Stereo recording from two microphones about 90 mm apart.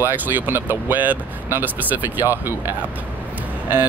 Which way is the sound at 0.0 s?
25° right (ahead or behind).